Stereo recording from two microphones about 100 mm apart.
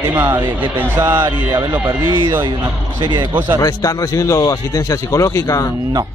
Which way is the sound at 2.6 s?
45° right (ahead or behind).